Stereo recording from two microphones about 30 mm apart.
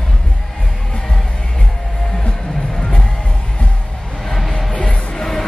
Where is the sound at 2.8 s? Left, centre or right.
Left.